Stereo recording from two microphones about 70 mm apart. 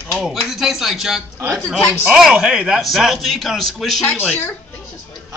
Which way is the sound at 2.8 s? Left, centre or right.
Centre.